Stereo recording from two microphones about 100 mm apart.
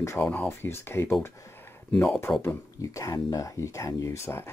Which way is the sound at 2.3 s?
5° left (ahead or behind).